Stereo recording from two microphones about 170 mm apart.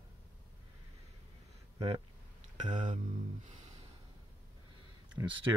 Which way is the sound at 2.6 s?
45° right (ahead or behind).